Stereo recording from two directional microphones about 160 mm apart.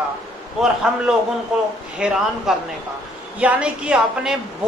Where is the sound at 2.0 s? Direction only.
5° right (ahead or behind).